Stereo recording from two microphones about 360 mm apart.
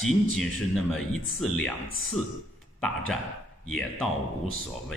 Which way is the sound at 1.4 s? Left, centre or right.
Centre.